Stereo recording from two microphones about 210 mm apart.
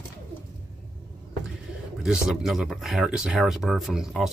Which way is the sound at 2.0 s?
5° right (ahead or behind).